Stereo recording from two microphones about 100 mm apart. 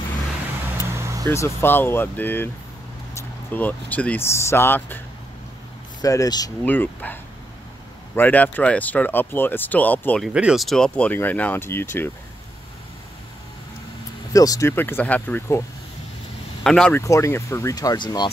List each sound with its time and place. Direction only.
0.9 s vehicle: 30° right (ahead or behind)
1.2 s speech: 25° left (ahead or behind)
4.2 s speech: 25° left (ahead or behind)
5.9 s speech: 35° left (ahead or behind)
6.6 s speech: 20° left (ahead or behind)
8.2 s speech: 15° left (ahead or behind)
10.3 s speech: 10° right (ahead or behind)
10.6 s speech: 5° left (ahead or behind); by 12.1 s 20° left (ahead or behind)
14.3 s speech: 35° left (ahead or behind)
14.7 s speech: 20° left (ahead or behind)
16.6 s speech: 5° left (ahead or behind)
17.0 s speech: 30° left (ahead or behind); by 18.3 s 50° left (ahead or behind)